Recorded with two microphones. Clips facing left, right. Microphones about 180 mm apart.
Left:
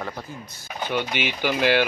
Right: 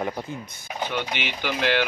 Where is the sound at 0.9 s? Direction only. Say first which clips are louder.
Left 7 dB; 10° left (ahead or behind).